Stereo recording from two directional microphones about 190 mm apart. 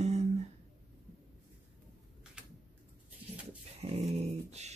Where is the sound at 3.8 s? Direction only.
35° right (ahead or behind).